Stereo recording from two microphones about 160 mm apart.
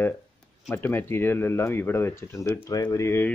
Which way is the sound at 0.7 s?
15° left (ahead or behind).